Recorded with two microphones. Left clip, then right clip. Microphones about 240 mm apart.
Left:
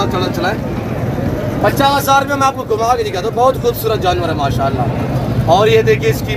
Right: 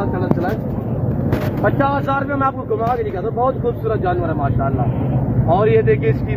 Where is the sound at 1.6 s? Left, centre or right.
Left.